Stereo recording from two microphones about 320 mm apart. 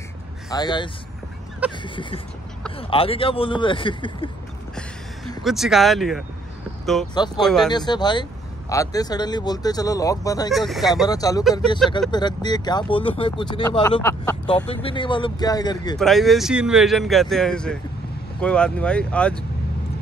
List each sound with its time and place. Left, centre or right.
0.5 s speech: centre
5.4 s speech: centre
7.4 s speech: centre
7.7 s speech: centre
10.5 s speech: centre
10.9 s speech: centre
14.5 s speech: centre
16.0 s speech: centre